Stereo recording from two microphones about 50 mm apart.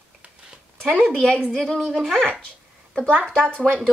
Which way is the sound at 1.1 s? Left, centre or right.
Centre.